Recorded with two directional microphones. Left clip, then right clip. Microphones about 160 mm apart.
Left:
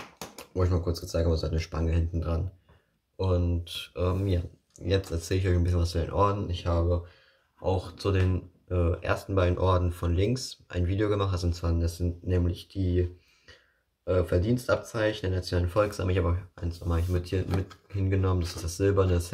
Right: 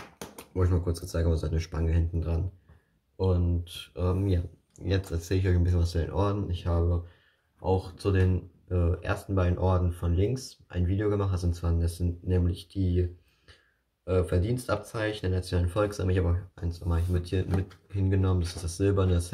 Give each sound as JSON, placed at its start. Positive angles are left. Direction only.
{"t": 0.6, "sound": "speech", "side_deg": -5}
{"t": 3.9, "sound": "speech", "side_deg": 15}
{"t": 14.0, "sound": "speech", "side_deg": 20}